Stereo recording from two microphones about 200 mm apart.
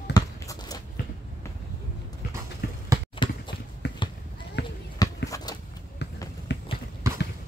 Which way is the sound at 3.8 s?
60° left (ahead or behind).